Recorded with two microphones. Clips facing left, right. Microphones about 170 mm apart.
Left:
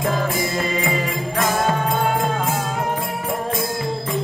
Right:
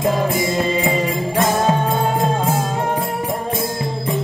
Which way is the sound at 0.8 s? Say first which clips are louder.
Right 4 dB; 25° right (ahead or behind).